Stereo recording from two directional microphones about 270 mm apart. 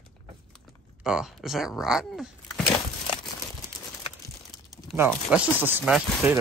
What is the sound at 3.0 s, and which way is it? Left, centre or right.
Crumpling, centre.